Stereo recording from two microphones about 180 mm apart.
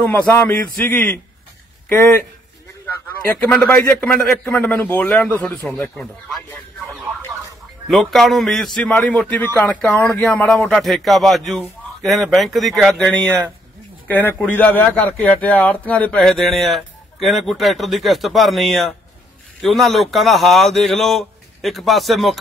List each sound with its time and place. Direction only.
0.3 s a man's voice: 10° left (ahead or behind)
3.4 s a man's voice: 10° left (ahead or behind)
6.9 s a sound: 5° left (ahead or behind)
7.9 s speech: centre (ahead or behind)